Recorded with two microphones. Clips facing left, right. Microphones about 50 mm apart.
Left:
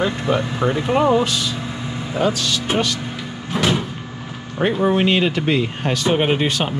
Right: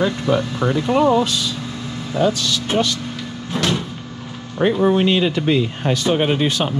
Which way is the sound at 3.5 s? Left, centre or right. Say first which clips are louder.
Left 2 dB; centre.